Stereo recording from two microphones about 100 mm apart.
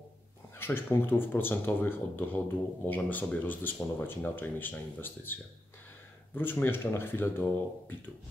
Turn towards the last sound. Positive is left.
turn(degrees=20)  # may be behind; listen again after turning